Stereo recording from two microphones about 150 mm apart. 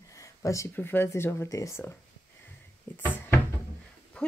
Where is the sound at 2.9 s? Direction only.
10° left (ahead or behind).